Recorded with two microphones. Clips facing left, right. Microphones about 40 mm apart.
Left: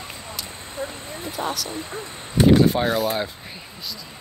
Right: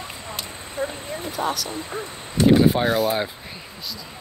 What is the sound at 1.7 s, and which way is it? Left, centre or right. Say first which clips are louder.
Speech: right 1 dB; centre.